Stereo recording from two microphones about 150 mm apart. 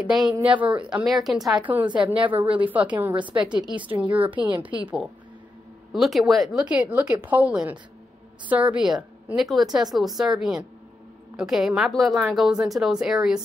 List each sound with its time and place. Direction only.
0.0 s a woman's voice: 5° right (ahead or behind)
2.1 s a woman's voice: 35° right (ahead or behind)
2.4 s a woman's voice: 10° right (ahead or behind)
3.2 s a woman's voice: 30° right (ahead or behind)
3.9 s a woman's voice: 10° right (ahead or behind)
5.9 s a woman's voice: centre (ahead or behind)